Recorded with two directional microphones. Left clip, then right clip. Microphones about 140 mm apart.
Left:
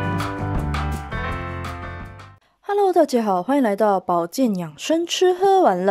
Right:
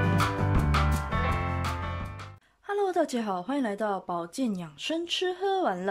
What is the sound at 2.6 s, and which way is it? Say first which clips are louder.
A woman's voice: left 10 dB; 35° left (ahead or behind).